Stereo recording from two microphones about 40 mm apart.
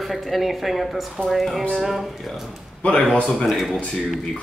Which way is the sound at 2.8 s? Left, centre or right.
Centre.